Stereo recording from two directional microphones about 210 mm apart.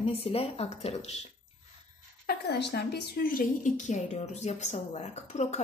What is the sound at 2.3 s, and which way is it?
A woman's voice, 55° left (ahead or behind).